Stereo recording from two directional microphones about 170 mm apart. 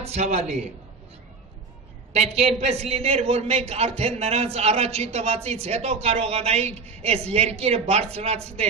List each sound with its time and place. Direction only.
0.0 s a man's voice: 40° right (ahead or behind)
2.1 s a man's voice: 40° right (ahead or behind)